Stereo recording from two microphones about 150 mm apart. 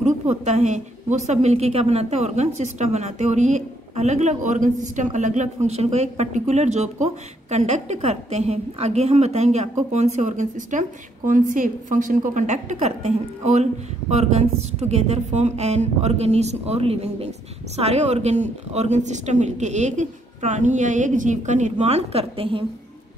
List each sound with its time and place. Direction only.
0.0 s a woman's voice: 45° right (ahead or behind)